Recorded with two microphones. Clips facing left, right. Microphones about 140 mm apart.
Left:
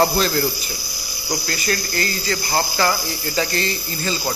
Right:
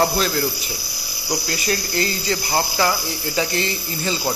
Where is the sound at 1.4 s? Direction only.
20° right (ahead or behind).